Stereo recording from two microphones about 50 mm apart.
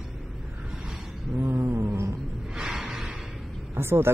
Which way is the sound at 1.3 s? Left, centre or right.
Right.